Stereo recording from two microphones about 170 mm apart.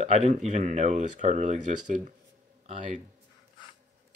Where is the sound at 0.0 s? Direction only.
40° right (ahead or behind).